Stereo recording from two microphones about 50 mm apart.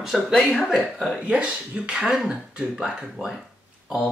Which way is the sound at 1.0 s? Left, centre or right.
Centre.